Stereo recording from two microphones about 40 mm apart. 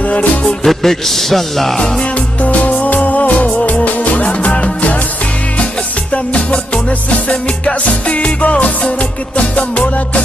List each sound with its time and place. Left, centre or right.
0.0 s music: left
0.7 s a man's voice: centre
2.1 s music: left
4.5 s music: left
6.1 s music: left